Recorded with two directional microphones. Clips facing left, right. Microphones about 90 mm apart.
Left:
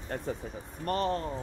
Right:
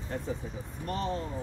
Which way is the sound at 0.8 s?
60° left (ahead or behind).